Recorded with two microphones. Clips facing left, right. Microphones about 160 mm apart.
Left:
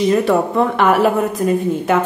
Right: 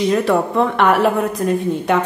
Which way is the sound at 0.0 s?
Centre (ahead or behind).